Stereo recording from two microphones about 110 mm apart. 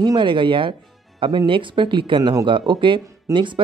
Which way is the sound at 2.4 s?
50° right (ahead or behind).